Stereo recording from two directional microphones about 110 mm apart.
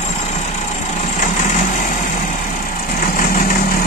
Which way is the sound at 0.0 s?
90° left.